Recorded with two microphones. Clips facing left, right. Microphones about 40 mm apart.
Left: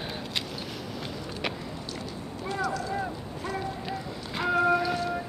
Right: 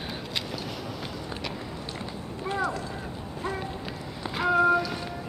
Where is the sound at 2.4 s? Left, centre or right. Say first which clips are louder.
Right 1 dB; right.